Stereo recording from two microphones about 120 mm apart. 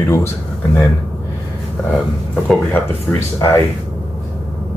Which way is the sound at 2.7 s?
25° left (ahead or behind).